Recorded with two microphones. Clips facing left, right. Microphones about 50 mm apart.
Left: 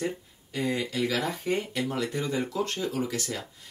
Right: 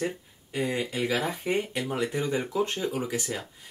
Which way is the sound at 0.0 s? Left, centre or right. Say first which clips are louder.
Even; right.